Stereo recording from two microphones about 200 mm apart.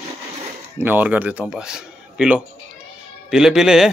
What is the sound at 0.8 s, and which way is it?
Speech, 10° right (ahead or behind).